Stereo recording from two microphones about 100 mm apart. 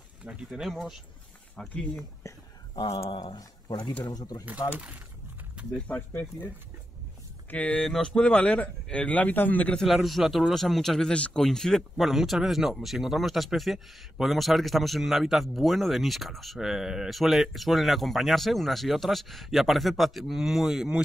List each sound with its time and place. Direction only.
0.2 s a man's voice: 10° right (ahead or behind)
2.7 s a sound: 50° left (ahead or behind)
3.1 s speech: 55° left (ahead or behind); by 4.5 s 40° left (ahead or behind)
4.7 s speech: 15° right (ahead or behind)
5.8 s a man's voice: 15° left (ahead or behind)
7.5 s a man's voice: 15° left (ahead or behind)
9.8 s a man's voice: centre (ahead or behind)